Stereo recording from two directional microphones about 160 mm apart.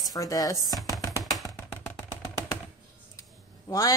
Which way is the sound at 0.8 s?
20° left (ahead or behind).